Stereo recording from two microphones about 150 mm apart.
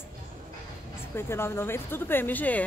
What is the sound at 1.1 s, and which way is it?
A woman's voice, 15° left (ahead or behind).